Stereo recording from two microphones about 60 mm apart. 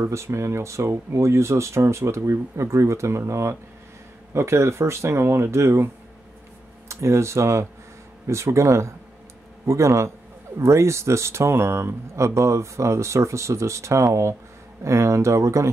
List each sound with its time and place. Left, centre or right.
0.0 s speech: right
6.9 s speech: right